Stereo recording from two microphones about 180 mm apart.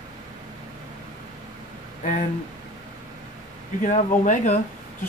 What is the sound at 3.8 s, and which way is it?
Speech, 45° left (ahead or behind).